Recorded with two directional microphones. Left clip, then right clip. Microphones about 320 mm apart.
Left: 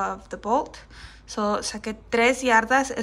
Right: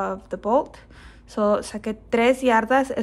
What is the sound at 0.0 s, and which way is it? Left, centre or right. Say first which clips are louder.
A woman's voice: right 2 dB; centre.